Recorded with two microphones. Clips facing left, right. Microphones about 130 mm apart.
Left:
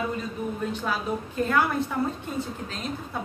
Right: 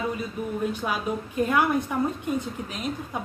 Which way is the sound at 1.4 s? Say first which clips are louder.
Right 2 dB; 15° right (ahead or behind).